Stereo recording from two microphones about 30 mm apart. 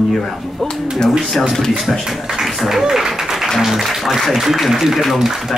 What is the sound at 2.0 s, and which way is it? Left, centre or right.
Speech, centre.